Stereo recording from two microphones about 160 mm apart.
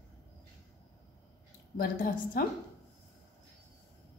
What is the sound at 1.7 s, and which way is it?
Speech, 65° left (ahead or behind).